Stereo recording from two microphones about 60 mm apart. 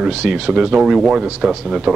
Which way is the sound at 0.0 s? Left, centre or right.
Centre.